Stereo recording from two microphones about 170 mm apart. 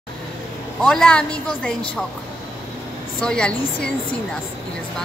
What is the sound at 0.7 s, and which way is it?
Speech, 5° left (ahead or behind).